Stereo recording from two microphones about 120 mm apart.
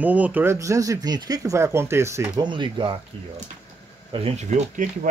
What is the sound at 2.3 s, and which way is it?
Speech, 40° right (ahead or behind).